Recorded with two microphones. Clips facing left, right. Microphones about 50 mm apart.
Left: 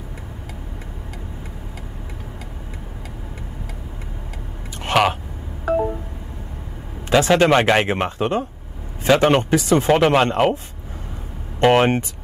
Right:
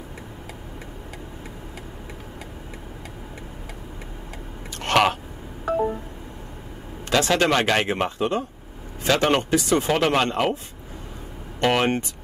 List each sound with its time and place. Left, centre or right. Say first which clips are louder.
4.7 s a sound: left 2 dB; centre
7.1 s speech: left 5 dB; centre
9.9 s speech: left 5 dB; centre
11.6 s speech: left 6 dB; left